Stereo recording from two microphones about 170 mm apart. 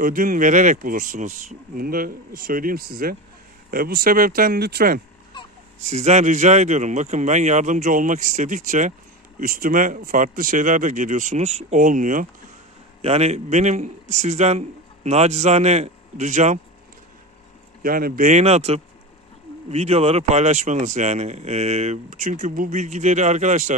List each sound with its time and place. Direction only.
0.0 s speech: 55° right (ahead or behind)
5.8 s speech: 40° right (ahead or behind)
13.0 s speech: 40° right (ahead or behind)
17.8 s speech: 60° right (ahead or behind)